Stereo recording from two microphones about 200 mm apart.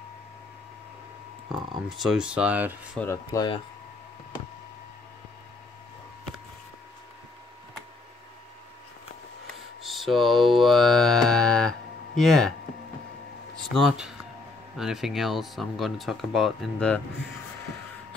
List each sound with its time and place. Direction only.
1.9 s speech: centre (ahead or behind)
3.0 s speech: 15° left (ahead or behind)
9.8 s mantra: centre (ahead or behind)
12.2 s speech: centre (ahead or behind)
13.7 s speech: centre (ahead or behind)